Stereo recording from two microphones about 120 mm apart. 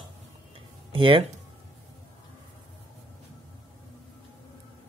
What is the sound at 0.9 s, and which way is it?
Speech, 45° right (ahead or behind).